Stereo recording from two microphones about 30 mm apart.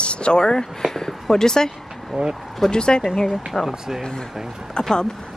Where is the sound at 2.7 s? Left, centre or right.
Left.